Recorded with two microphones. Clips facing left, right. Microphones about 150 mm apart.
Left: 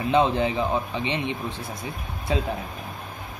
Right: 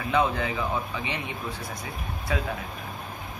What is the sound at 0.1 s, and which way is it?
A man's voice, 25° left (ahead or behind).